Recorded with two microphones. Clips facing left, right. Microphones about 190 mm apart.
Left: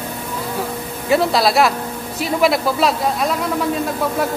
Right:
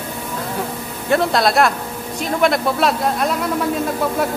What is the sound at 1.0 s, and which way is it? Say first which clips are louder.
A man's voice: left 1 dB; 5° left (ahead or behind).